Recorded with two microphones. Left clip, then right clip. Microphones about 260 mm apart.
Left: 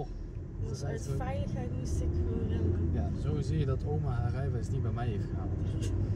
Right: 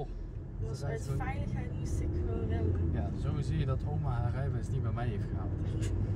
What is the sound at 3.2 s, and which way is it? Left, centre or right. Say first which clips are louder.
Speech: left 3 dB; centre.